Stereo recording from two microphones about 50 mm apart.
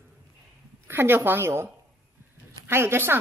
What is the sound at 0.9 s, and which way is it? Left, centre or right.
Speech, right.